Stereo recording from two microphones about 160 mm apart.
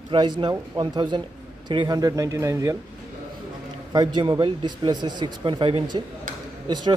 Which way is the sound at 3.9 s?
25° right (ahead or behind).